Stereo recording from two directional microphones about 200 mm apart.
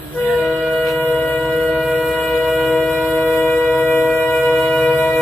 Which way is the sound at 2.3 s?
5° left (ahead or behind).